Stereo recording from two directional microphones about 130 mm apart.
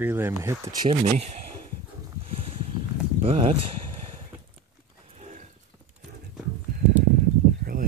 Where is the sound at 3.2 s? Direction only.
50° right (ahead or behind).